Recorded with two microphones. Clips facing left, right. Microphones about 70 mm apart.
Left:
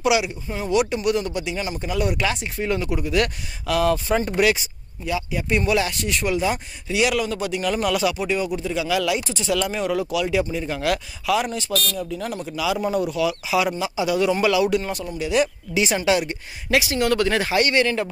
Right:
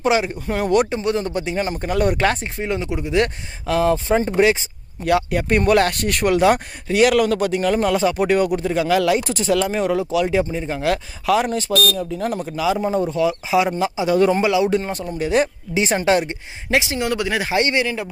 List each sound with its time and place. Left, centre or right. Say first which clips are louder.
0.0 s speech: right 2 dB; right
0.5 s speech: right 4 dB; right
0.8 s speech: right 1 dB; right
2.4 s speech: even; right
5.0 s speech: right 7 dB; right
8.2 s speech: right 6 dB; right
14.4 s speech: right 2 dB; right